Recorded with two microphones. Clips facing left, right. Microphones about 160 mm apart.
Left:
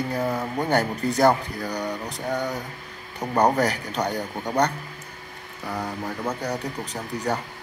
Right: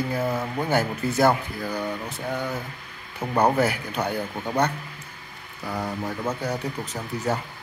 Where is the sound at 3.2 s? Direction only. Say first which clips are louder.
Even; 5° right (ahead or behind).